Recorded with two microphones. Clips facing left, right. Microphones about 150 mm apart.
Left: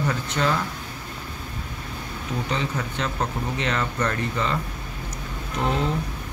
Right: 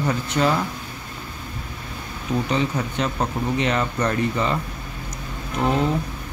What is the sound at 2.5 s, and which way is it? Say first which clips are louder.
Speech: right 4 dB; 15° right (ahead or behind).